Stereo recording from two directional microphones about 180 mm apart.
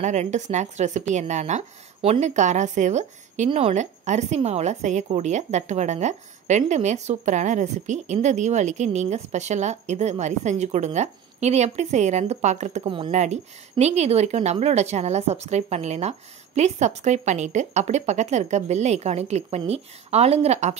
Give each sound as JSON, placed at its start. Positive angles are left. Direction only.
{"t": 0.0, "sound": "a woman's voice", "side_deg": -40}
{"t": 12.8, "sound": "a woman's voice", "side_deg": -30}